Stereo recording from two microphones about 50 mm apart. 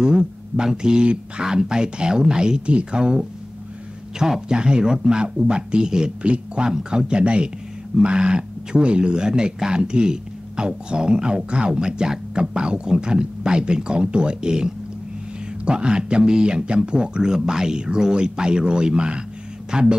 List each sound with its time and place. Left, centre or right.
0.0 s speech: centre